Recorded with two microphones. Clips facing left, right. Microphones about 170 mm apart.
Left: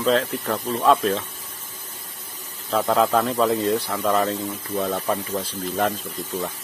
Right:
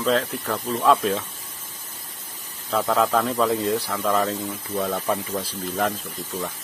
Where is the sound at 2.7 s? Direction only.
5° left (ahead or behind).